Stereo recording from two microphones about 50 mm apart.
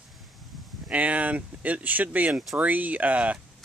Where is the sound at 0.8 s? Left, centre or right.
Right.